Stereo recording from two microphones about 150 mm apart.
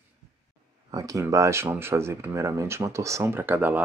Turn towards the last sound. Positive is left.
turn(degrees=-10)  # may be behind; listen again after turning